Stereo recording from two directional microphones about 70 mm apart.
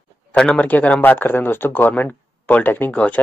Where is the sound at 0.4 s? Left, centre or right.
Centre.